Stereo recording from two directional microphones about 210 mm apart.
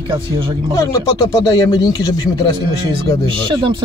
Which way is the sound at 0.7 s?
15° left (ahead or behind).